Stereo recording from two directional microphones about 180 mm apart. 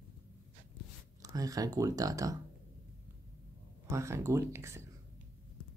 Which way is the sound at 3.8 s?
15° right (ahead or behind).